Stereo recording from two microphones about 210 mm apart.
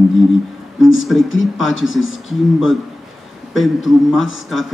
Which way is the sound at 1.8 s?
65° left (ahead or behind).